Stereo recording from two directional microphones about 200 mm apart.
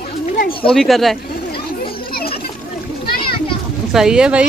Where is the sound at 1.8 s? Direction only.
50° left (ahead or behind).